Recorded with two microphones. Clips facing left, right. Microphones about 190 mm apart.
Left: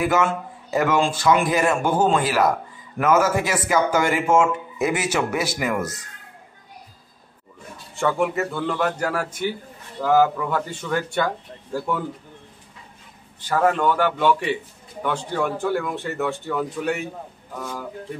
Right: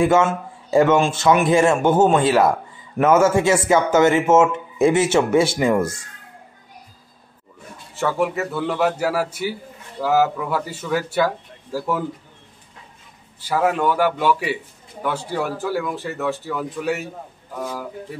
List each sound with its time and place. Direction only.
0.0 s speech: 25° right (ahead or behind)
7.9 s a man's voice: 5° right (ahead or behind)
13.4 s a man's voice: 10° right (ahead or behind)